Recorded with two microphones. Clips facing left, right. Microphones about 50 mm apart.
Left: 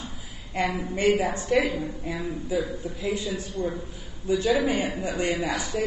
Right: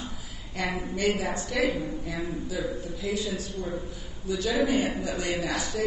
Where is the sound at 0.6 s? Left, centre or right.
Left.